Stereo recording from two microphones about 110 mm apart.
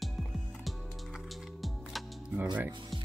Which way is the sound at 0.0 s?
Centre (ahead or behind).